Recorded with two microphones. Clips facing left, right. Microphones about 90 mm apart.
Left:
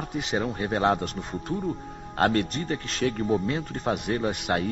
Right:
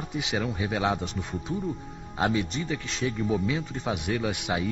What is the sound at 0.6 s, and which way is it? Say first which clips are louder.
Speech: left 3 dB; 45° left (ahead or behind).